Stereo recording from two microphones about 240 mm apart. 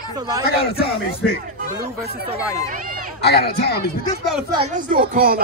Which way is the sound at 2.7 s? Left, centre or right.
Right.